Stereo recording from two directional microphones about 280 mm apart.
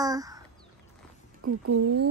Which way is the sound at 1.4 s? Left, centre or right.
Right.